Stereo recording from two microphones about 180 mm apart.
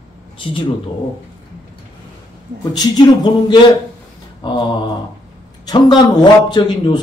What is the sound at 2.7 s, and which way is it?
Speech, 25° left (ahead or behind).